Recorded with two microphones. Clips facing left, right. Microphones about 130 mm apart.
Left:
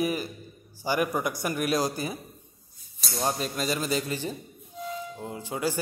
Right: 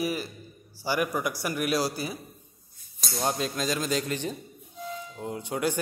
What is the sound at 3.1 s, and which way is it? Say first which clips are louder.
Speech: even; centre (ahead or behind).